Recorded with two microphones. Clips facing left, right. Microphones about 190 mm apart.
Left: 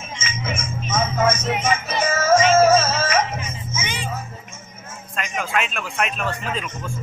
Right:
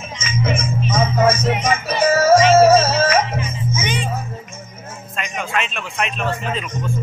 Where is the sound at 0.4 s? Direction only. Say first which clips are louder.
Right 9 dB; 35° right (ahead or behind).